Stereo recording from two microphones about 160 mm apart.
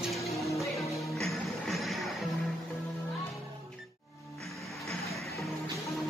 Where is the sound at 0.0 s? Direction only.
Centre (ahead or behind).